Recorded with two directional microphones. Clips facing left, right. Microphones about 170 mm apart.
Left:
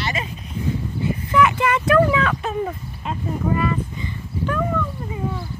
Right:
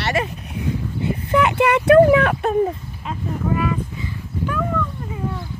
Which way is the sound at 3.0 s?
5° right (ahead or behind).